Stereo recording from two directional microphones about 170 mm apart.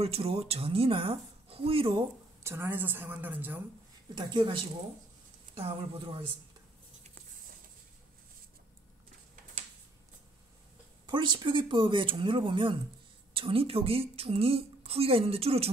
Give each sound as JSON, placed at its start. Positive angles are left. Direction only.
{"t": 0.0, "sound": "a woman's voice", "side_deg": -35}
{"t": 2.4, "sound": "speech", "side_deg": -15}
{"t": 4.1, "sound": "a woman's voice", "side_deg": -25}
{"t": 11.1, "sound": "a woman's voice", "side_deg": -25}